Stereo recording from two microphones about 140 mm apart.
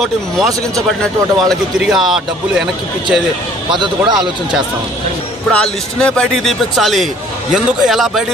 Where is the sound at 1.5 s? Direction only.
5° right (ahead or behind).